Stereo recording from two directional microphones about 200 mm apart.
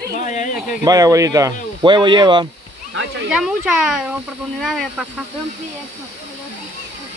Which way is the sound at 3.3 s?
5° right (ahead or behind).